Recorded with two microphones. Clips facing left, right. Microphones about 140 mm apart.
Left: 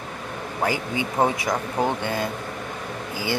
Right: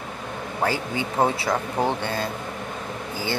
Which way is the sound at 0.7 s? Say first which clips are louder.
Left 1 dB; 15° left (ahead or behind).